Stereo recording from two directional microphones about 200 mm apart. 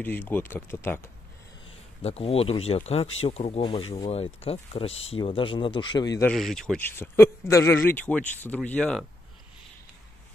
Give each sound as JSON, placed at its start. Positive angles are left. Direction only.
{"t": 0.0, "sound": "speech", "side_deg": 10}
{"t": 2.0, "sound": "speech", "side_deg": 30}
{"t": 6.2, "sound": "speech", "side_deg": 0}